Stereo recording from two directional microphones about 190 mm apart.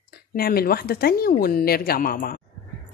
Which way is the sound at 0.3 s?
55° left (ahead or behind).